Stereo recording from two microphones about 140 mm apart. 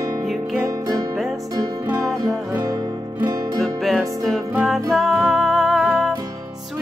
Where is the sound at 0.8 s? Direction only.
25° right (ahead or behind).